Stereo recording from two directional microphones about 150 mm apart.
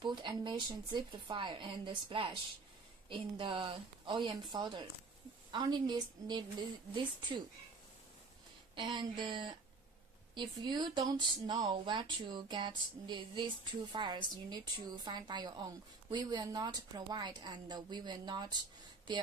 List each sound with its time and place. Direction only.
0.0 s a woman's voice: 30° right (ahead or behind)
8.7 s a woman's voice: 30° right (ahead or behind)